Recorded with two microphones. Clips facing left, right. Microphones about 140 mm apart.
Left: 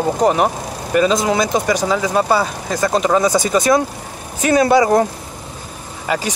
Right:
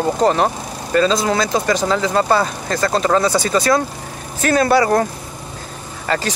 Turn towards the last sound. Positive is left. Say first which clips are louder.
# even
turn(degrees=10)  # may be behind; listen again after turning